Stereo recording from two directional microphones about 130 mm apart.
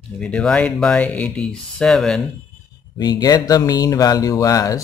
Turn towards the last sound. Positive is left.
turn(degrees=25)  # may be behind; listen again after turning